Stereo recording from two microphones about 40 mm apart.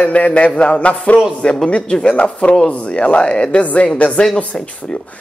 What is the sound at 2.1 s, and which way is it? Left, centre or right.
Speech, left.